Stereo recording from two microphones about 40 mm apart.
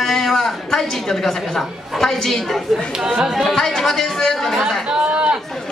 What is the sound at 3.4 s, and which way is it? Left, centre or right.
A woman's voice, centre.